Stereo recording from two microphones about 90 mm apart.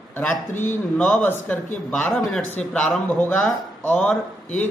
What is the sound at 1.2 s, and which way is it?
Speech, 20° left (ahead or behind).